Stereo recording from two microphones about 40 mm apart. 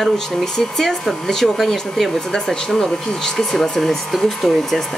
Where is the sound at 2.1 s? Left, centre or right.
Centre.